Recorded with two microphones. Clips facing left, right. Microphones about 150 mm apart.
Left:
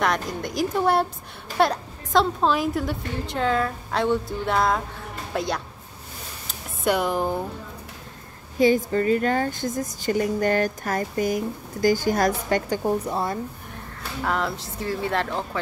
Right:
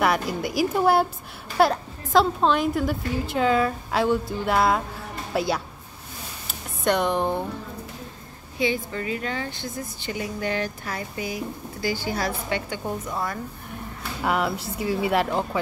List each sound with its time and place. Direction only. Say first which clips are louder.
0.0 s a woman's voice: right 2 dB; 5° right (ahead or behind)
6.8 s a woman's voice: even; 5° left (ahead or behind)
8.5 s a woman's voice: left 7 dB; 45° left (ahead or behind)
14.2 s speech: right 2 dB; 10° right (ahead or behind)